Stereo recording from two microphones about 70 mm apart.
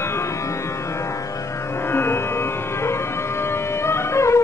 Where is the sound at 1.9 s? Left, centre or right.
Left.